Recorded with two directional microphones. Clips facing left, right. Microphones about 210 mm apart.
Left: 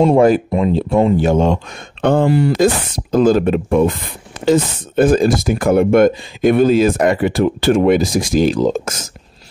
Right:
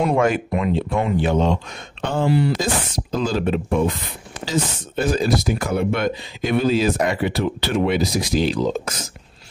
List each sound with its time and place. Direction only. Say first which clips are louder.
0.0 s speech: left 8 dB; 35° left (ahead or behind)